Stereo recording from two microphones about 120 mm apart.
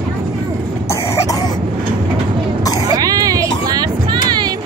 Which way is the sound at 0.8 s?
25° left (ahead or behind).